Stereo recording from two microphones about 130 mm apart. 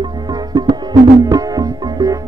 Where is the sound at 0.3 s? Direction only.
30° right (ahead or behind).